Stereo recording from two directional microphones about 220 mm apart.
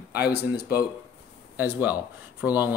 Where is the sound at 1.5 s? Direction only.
10° right (ahead or behind).